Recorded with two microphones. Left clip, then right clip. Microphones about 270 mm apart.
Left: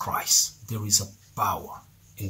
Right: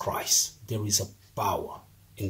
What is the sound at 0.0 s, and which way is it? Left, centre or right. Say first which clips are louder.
Speech: left 3 dB; left.